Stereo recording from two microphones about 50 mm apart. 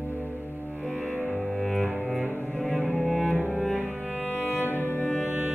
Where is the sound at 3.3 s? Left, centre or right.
Right.